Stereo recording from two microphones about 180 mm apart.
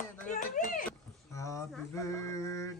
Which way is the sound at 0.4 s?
50° left (ahead or behind).